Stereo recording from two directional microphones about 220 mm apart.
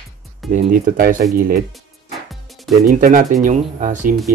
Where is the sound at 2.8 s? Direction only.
35° right (ahead or behind).